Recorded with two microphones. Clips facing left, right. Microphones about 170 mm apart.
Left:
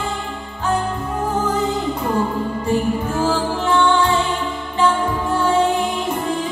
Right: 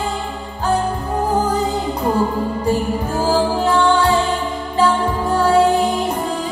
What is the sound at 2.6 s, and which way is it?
Music, 35° right (ahead or behind).